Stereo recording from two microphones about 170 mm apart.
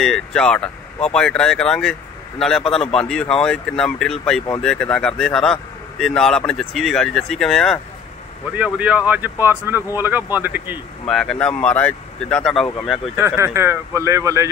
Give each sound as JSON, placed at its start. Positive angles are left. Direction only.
{"t": 0.0, "sound": "speech", "side_deg": 5}
{"t": 8.5, "sound": "speech", "side_deg": -10}
{"t": 11.1, "sound": "speech", "side_deg": 5}
{"t": 13.2, "sound": "speech", "side_deg": -15}